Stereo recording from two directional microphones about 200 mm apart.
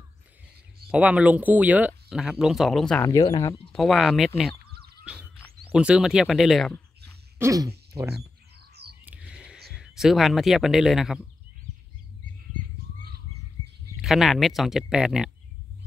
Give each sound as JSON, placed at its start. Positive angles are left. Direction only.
{"t": 0.9, "sound": "speech", "side_deg": -5}
{"t": 3.1, "sound": "speech", "side_deg": 15}
{"t": 3.7, "sound": "speech", "side_deg": 0}
{"t": 5.0, "sound": "a sound", "side_deg": -5}
{"t": 5.7, "sound": "speech", "side_deg": -5}
{"t": 7.3, "sound": "speech", "side_deg": -15}
{"t": 9.0, "sound": "a sound", "side_deg": -5}
{"t": 9.7, "sound": "speech", "side_deg": 0}
{"t": 14.0, "sound": "speech", "side_deg": 0}